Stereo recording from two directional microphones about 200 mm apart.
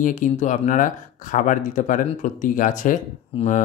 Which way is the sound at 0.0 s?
40° left (ahead or behind).